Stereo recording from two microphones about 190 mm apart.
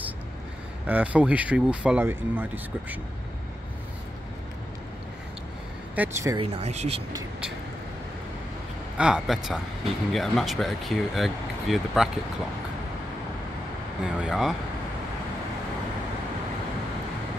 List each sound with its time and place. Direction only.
0.8 s speech: 10° right (ahead or behind)
5.9 s speech: 15° right (ahead or behind)
6.4 s speech: 35° right (ahead or behind)
8.9 s speech: 5° right (ahead or behind)
14.0 s speech: 5° right (ahead or behind)